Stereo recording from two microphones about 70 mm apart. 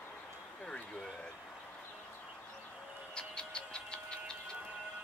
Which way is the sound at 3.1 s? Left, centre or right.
Centre.